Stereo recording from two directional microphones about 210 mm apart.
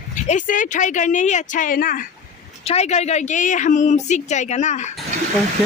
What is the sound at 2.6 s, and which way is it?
A woman's voice, 30° left (ahead or behind).